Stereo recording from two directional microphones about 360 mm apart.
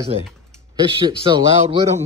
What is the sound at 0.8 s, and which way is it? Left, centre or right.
Speech, centre.